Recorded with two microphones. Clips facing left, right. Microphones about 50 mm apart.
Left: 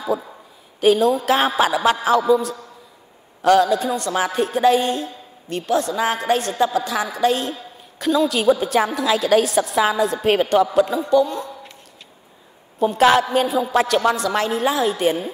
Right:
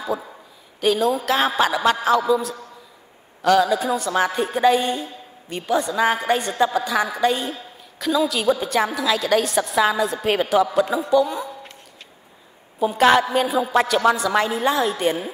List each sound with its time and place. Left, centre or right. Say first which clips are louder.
0.0 s a woman's voice: left 3 dB; centre
11.2 s speech: even; centre
12.8 s a woman's voice: left 1 dB; centre